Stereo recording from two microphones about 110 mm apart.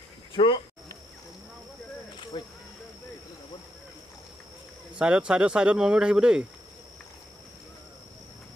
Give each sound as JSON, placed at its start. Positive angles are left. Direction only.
{"t": 0.4, "sound": "speech", "side_deg": 55}
{"t": 2.3, "sound": "a sound", "side_deg": 45}
{"t": 4.9, "sound": "speech", "side_deg": -10}